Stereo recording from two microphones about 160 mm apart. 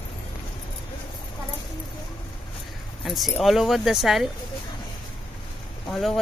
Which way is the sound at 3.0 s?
Centre (ahead or behind).